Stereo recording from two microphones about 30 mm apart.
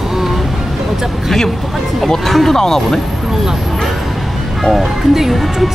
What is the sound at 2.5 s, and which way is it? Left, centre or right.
Speech, centre.